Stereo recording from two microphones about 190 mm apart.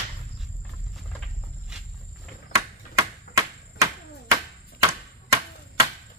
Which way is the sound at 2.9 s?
15° right (ahead or behind).